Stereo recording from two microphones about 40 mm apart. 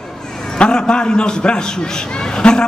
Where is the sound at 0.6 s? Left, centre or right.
Left.